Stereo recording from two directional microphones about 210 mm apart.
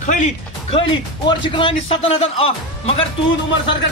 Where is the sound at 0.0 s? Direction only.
35° left (ahead or behind).